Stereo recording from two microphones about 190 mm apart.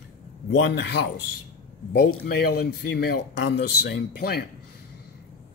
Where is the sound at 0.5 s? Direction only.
70° left (ahead or behind).